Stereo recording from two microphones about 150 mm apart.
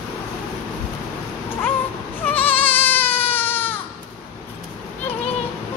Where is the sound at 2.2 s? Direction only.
10° left (ahead or behind).